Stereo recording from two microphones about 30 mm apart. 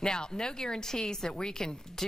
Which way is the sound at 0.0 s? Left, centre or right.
Left.